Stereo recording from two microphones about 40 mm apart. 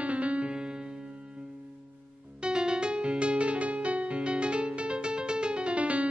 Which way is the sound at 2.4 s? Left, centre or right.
Right.